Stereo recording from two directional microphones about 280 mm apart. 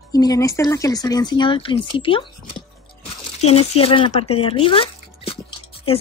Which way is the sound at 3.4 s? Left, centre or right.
Left.